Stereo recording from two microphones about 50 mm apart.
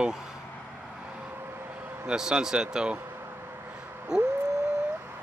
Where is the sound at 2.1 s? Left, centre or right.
Centre.